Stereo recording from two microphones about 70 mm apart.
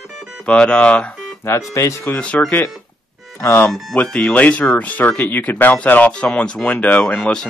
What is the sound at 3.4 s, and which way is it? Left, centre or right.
Speech, left.